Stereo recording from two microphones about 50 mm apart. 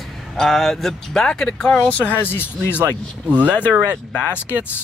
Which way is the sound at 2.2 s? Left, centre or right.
Left.